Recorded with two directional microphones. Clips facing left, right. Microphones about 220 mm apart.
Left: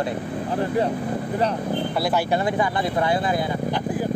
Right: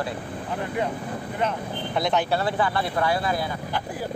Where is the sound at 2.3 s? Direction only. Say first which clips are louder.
Left 2 dB; 15° left (ahead or behind).